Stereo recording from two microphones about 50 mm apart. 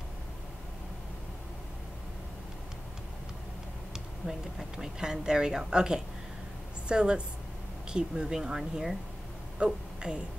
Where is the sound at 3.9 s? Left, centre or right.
Centre.